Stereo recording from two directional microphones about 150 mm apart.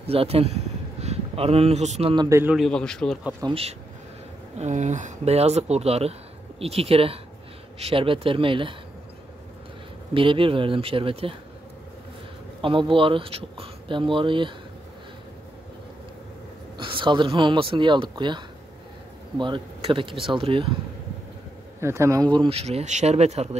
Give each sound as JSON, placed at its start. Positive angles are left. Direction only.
{"t": 0.0, "sound": "speech", "side_deg": -40}
{"t": 2.1, "sound": "a man's voice", "side_deg": -20}
{"t": 2.5, "sound": "speech", "side_deg": 5}
{"t": 3.4, "sound": "speech", "side_deg": -40}
{"t": 4.6, "sound": "speech", "side_deg": -50}
{"t": 10.1, "sound": "speech", "side_deg": -35}
{"t": 12.6, "sound": "speech", "side_deg": -35}
{"t": 16.7, "sound": "speech", "side_deg": -35}
{"t": 21.7, "sound": "speech", "side_deg": -20}